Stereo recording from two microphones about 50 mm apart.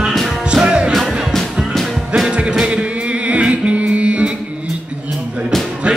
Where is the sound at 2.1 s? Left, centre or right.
Right.